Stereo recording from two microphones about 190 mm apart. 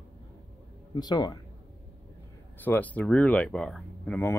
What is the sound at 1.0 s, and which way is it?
Speech, 20° left (ahead or behind).